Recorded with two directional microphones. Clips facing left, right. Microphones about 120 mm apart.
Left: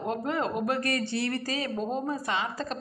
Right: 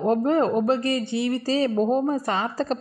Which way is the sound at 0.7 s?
20° right (ahead or behind).